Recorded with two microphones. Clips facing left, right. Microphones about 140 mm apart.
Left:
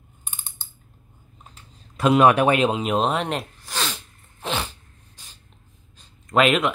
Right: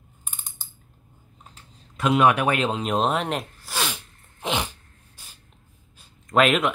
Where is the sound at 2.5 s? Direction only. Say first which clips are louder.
Left 4 dB; 20° left (ahead or behind).